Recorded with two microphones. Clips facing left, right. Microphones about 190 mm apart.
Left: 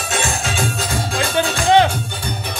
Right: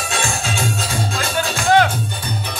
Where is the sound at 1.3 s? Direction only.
25° left (ahead or behind).